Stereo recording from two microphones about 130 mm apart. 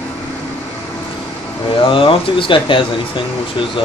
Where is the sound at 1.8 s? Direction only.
40° left (ahead or behind).